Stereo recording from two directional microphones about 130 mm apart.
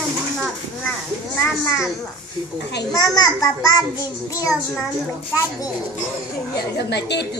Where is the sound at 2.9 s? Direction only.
30° left (ahead or behind).